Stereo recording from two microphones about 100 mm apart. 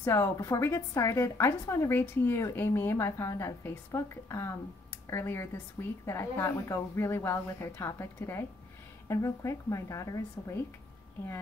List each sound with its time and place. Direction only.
0.0 s a woman's voice: 30° left (ahead or behind)